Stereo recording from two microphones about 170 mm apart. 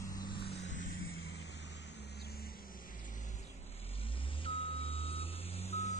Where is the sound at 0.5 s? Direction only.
45° left (ahead or behind).